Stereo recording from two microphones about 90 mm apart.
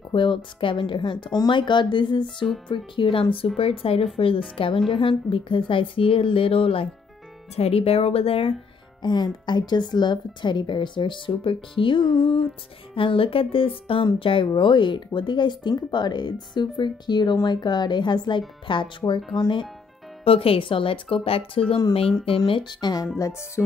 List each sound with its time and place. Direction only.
0.1 s speech: 70° left (ahead or behind)
2.7 s speech: 70° left (ahead or behind)
3.5 s a woman's voice: 90° left
9.0 s speech: 55° left (ahead or behind)
12.9 s speech: 80° left
14.2 s speech: 70° left (ahead or behind)
20.2 s speech: 90° left
22.5 s speech: 60° left (ahead or behind)
23.1 s speech: 35° left (ahead or behind)